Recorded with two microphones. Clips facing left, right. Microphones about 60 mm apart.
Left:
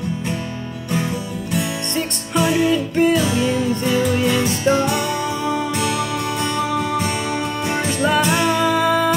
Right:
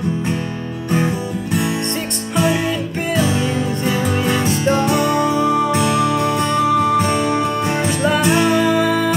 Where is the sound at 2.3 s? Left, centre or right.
Right.